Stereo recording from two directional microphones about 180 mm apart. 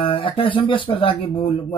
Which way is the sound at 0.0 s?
30° left (ahead or behind).